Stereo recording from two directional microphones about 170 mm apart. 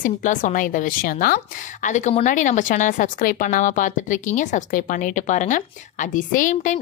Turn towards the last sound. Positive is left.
turn(degrees=50)  # may be behind; listen again after turning